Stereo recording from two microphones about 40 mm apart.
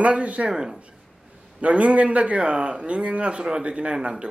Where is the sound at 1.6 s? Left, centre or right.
Right.